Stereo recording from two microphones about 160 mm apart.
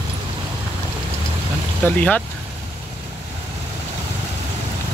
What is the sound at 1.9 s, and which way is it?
Speech, 10° left (ahead or behind).